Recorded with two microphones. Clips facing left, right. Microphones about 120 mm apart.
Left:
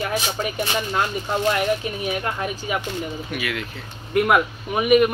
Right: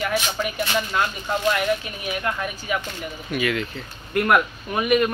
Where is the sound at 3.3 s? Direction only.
5° left (ahead or behind).